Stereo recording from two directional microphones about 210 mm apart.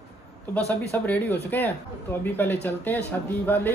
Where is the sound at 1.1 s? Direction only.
10° left (ahead or behind).